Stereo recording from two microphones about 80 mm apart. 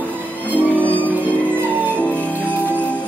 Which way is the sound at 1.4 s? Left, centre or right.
Right.